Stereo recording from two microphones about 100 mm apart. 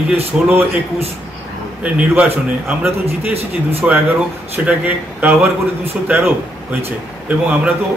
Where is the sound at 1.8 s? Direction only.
10° right (ahead or behind).